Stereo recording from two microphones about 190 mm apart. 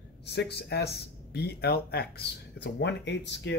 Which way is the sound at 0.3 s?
60° left (ahead or behind).